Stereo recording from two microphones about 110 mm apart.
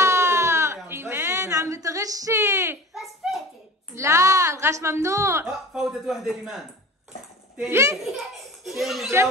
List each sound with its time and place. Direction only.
0.0 s a sound: 25° right (ahead or behind)
2.9 s a sound: centre (ahead or behind)
3.9 s a woman's voice: 25° right (ahead or behind)
5.4 s speech: 10° right (ahead or behind)
7.7 s a woman's voice: 25° right (ahead or behind)
8.0 s a child's voice: centre (ahead or behind)